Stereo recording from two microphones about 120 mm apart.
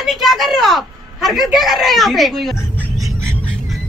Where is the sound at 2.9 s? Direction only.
30° right (ahead or behind).